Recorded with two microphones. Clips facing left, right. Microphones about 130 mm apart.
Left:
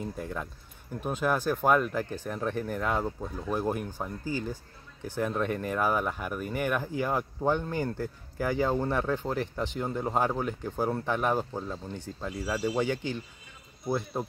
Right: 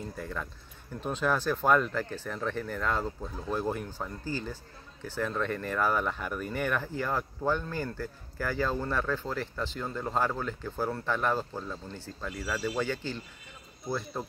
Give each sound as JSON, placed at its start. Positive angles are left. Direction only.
{"t": 0.2, "sound": "a man's voice", "side_deg": 15}